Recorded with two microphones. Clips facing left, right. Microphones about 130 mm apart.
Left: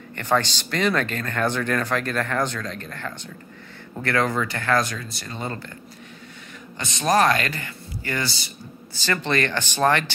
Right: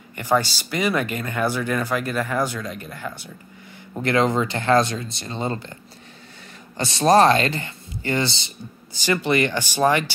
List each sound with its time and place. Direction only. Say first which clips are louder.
0.1 s speech: right 2 dB; 10° right (ahead or behind)
6.8 s speech: right 5 dB; 30° right (ahead or behind)
8.9 s speech: right 3 dB; 15° right (ahead or behind)